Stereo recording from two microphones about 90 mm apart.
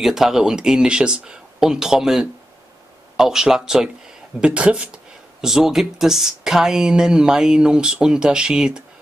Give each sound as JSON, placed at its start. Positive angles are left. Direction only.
{"t": 0.0, "sound": "speech", "side_deg": -5}